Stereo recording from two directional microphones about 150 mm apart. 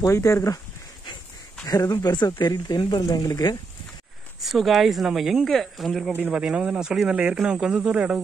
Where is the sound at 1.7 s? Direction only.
25° left (ahead or behind).